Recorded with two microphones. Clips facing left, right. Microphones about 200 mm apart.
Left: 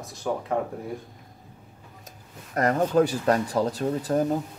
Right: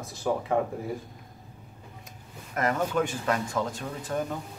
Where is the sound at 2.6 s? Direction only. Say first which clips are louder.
Left 5 dB; 35° left (ahead or behind).